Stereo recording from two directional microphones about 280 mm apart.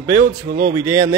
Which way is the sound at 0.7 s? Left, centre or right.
Centre.